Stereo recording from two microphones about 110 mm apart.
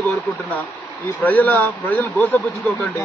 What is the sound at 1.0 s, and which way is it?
Speech, 15° left (ahead or behind).